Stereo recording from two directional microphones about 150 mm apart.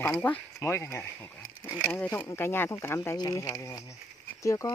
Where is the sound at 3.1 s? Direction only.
25° left (ahead or behind).